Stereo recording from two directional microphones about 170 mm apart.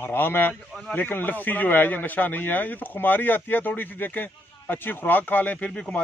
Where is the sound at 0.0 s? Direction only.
10° left (ahead or behind).